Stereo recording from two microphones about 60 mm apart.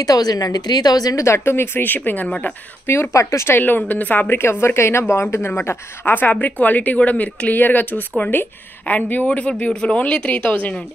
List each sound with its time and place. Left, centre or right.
0.0 s a woman's voice: left
1.2 s speech: left
2.2 s speech: centre
2.9 s speech: left
3.4 s a woman's voice: left